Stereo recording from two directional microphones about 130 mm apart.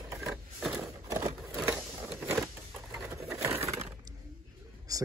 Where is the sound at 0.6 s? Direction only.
5° right (ahead or behind).